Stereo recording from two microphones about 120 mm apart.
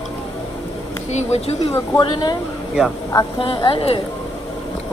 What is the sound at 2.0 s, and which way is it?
Speech, 40° left (ahead or behind).